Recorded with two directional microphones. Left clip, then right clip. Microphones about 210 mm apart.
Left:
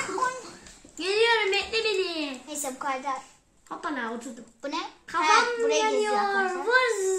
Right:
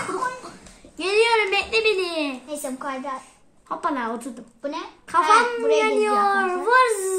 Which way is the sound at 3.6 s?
45° right (ahead or behind).